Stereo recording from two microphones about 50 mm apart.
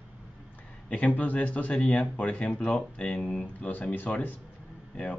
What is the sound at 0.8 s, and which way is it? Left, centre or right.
Speech, left.